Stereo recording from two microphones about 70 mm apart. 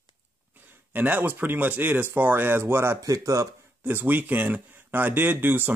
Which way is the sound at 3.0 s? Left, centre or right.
Right.